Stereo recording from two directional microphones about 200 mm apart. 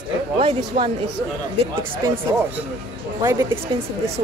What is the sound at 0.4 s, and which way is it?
Speech, 30° right (ahead or behind).